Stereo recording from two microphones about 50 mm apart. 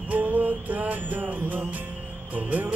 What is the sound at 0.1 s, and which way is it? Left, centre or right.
Music, right.